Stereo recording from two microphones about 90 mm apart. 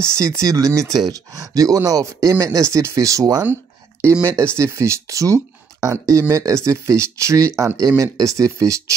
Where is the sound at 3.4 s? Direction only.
25° right (ahead or behind).